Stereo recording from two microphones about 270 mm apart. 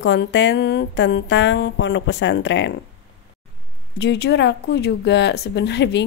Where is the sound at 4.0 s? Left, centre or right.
Left.